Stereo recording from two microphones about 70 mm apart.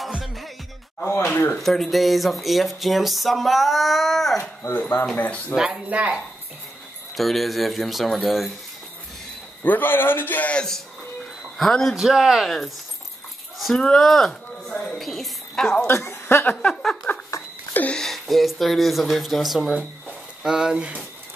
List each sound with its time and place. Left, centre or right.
1.0 s speech: left
1.3 s a man's voice: left
1.6 s speech: centre
4.4 s a man's voice: left
5.9 s speech: centre
7.2 s speech: centre
9.6 s a man's voice: left
11.5 s a man's voice: centre
13.7 s a woman's voice: centre
15.9 s speech: left
16.6 s a sound: centre
17.9 s speech: centre